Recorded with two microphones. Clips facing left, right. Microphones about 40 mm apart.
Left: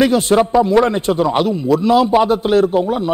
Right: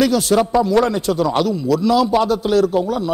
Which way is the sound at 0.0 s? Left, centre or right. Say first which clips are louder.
Left 2 dB; left.